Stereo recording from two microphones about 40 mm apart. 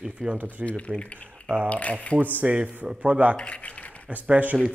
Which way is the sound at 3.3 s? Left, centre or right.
Left.